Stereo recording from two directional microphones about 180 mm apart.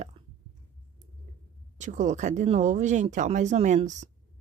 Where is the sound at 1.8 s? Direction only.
45° right (ahead or behind).